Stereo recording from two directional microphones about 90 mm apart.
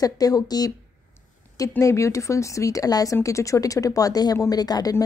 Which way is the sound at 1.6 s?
35° left (ahead or behind).